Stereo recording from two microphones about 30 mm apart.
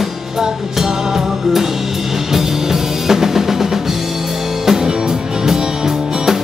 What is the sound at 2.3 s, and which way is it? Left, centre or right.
Music, centre.